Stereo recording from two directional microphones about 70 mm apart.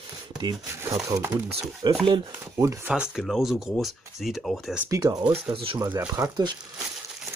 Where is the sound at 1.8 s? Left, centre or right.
Right.